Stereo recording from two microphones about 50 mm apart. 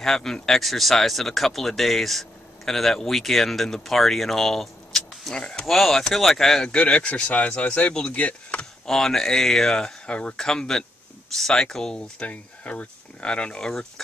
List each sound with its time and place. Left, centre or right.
0.0 s speech: centre
5.4 s speech: centre
5.7 s speech: centre; by 8.6 s left
8.8 s speech: centre
12.2 s speech: left